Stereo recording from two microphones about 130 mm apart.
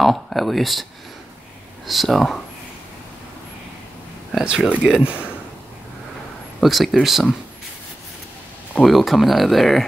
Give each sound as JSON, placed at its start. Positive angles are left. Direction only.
{"t": 0.0, "sound": "speech", "side_deg": 0}
{"t": 1.9, "sound": "speech", "side_deg": 0}
{"t": 4.3, "sound": "speech", "side_deg": -5}
{"t": 6.6, "sound": "speech", "side_deg": 0}
{"t": 8.7, "sound": "speech", "side_deg": 0}